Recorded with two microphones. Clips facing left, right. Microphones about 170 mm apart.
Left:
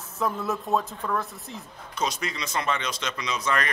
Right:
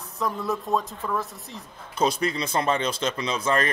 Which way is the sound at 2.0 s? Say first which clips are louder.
Right 6 dB; 30° right (ahead or behind).